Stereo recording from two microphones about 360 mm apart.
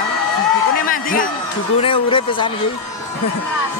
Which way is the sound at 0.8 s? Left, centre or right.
Left.